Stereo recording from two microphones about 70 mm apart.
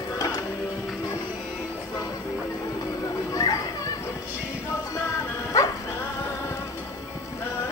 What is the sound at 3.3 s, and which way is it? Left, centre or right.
Children playing, left.